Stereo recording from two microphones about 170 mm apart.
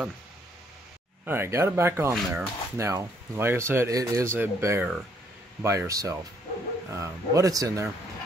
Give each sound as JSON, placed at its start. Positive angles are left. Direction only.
{"t": 1.2, "sound": "speech", "side_deg": -15}